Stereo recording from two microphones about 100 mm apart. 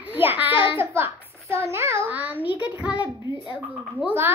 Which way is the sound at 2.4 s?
65° left (ahead or behind).